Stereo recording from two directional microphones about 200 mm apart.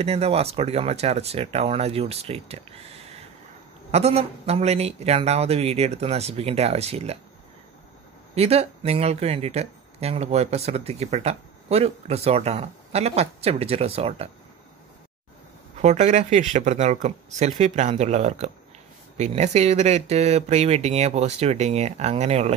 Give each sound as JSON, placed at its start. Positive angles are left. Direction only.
{"t": 0.0, "sound": "speech", "side_deg": -30}
{"t": 3.9, "sound": "speech", "side_deg": -30}
{"t": 8.4, "sound": "speech", "side_deg": -30}
{"t": 15.8, "sound": "speech", "side_deg": -35}